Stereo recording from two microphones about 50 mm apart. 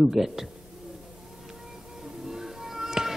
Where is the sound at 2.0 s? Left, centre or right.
Centre.